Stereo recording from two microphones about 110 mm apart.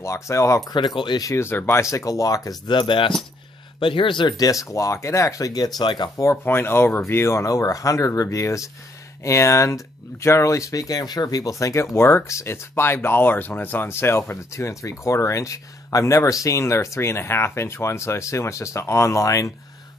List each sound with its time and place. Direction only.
0.0 s speech: 25° left (ahead or behind)
0.7 s speech: 45° left (ahead or behind)
1.2 s speech: 25° left (ahead or behind)
2.7 s speech: 50° left (ahead or behind)
6.2 s speech: 20° left (ahead or behind)